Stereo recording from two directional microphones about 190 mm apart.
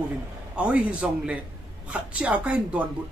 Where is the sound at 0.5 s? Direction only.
5° right (ahead or behind).